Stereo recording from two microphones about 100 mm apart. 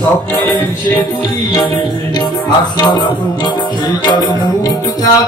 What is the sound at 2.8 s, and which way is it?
Music, 45° left (ahead or behind).